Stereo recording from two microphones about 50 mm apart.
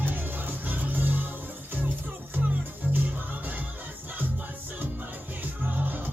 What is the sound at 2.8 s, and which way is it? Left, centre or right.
Music, right.